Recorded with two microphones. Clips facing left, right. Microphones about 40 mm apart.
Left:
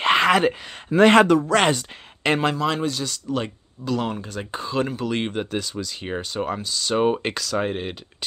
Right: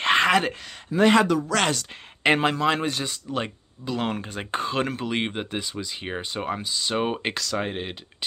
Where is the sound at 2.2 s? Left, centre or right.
Centre.